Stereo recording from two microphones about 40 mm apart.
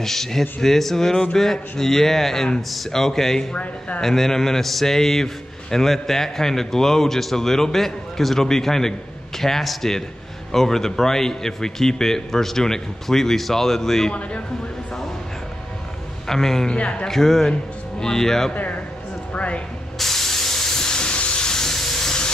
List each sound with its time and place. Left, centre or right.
0.0 s a man's voice: centre
16.3 s a man's voice: centre
16.7 s a man's voice: left
17.1 s speech: centre
18.5 s speech: left
20.0 s steam: centre